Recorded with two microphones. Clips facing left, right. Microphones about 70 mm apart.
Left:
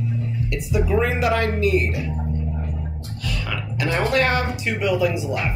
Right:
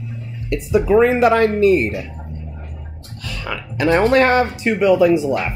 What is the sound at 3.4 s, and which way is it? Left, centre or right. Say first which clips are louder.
Speech: right 8 dB; right.